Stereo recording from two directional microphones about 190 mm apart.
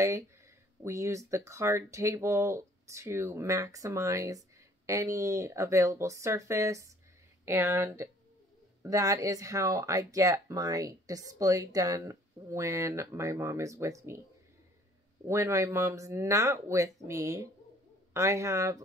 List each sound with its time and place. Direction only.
0.8 s speech: 15° right (ahead or behind)
15.2 s speech: 15° right (ahead or behind)